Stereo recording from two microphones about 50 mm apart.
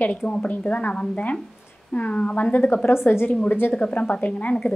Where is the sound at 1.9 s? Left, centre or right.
Left.